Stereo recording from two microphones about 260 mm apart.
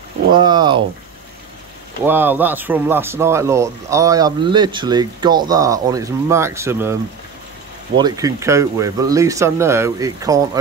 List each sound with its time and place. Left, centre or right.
0.3 s speech: centre
2.0 s speech: centre
8.0 s speech: centre